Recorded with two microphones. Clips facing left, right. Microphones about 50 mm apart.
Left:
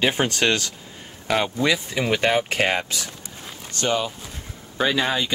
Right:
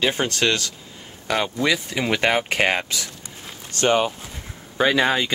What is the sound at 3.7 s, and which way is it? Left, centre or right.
Speech, right.